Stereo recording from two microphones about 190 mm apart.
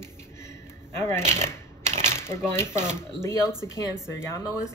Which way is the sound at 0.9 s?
15° left (ahead or behind).